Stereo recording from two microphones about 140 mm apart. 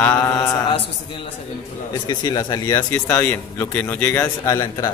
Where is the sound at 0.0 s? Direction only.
15° left (ahead or behind).